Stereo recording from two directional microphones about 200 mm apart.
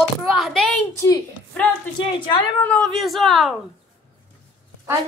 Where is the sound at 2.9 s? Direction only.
Centre (ahead or behind).